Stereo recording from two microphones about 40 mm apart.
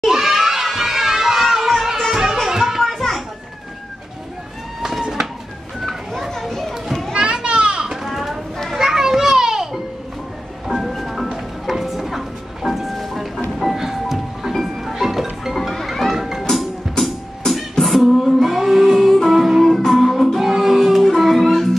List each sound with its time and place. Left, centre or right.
0.0 s children shouting: centre
2.5 s music: centre
2.8 s children playing: centre
5.8 s children playing: centre
7.2 s children playing: right
8.1 s a sound: centre
8.6 s children playing: centre
10.7 s music: centre
16.1 s music: centre
17.8 s music: centre
21.0 s music: centre